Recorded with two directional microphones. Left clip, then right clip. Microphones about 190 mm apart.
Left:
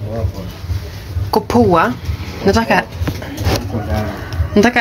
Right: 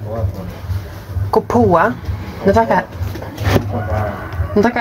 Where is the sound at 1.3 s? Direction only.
10° left (ahead or behind).